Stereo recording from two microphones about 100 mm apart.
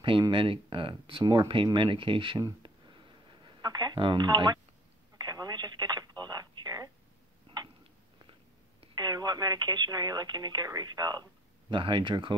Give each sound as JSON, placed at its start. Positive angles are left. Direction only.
{"t": 0.3, "sound": "speech", "side_deg": -60}
{"t": 1.2, "sound": "speech", "side_deg": -45}
{"t": 3.6, "sound": "speech", "side_deg": -40}
{"t": 5.2, "sound": "telephone", "side_deg": -40}
{"t": 8.9, "sound": "speech", "side_deg": -40}
{"t": 11.7, "sound": "speech", "side_deg": -55}